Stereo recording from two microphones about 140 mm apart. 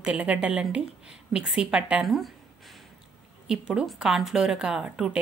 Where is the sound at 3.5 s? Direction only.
5° right (ahead or behind).